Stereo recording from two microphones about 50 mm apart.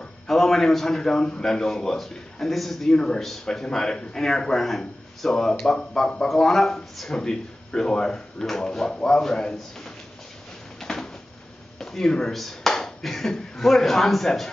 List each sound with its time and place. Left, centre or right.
0.3 s a man's voice: centre
2.9 s speech: centre
6.2 s speech: centre
10.8 s a sound: centre
11.8 s speech: centre